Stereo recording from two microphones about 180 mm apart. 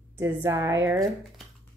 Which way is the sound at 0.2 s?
15° right (ahead or behind).